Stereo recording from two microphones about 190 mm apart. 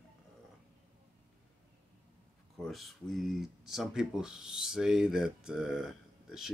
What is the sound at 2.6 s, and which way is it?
Speech, centre (ahead or behind).